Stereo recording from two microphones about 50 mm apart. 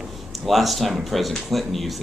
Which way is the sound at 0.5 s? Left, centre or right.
Centre.